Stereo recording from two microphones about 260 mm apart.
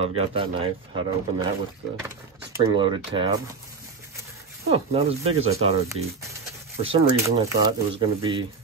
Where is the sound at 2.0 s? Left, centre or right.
Centre.